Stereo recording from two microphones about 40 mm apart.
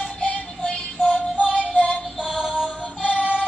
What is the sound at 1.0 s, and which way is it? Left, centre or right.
Music, right.